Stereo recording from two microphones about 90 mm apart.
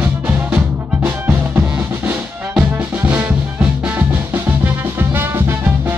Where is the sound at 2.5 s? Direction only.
15° right (ahead or behind).